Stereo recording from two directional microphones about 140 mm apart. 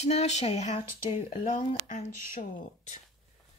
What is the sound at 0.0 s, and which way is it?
Speech, 50° left (ahead or behind).